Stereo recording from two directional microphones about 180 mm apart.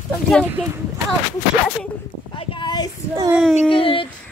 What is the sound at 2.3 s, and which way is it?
A child's voice, 30° left (ahead or behind).